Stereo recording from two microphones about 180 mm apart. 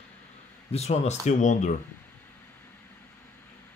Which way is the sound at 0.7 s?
35° left (ahead or behind).